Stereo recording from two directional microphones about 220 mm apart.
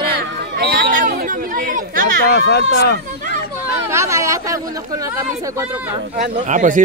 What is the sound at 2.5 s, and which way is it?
Speech, 50° left (ahead or behind).